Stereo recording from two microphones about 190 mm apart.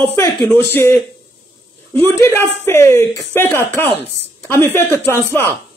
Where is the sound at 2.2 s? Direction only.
10° left (ahead or behind).